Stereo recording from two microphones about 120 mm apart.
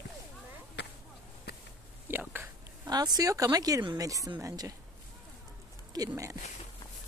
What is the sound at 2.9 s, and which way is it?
Speech, 35° right (ahead or behind).